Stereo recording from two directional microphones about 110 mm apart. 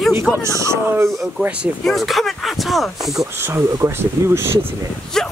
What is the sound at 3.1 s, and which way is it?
Speech, 25° right (ahead or behind).